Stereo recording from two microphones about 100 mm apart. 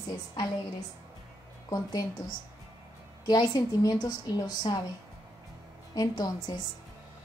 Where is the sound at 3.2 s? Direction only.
40° left (ahead or behind).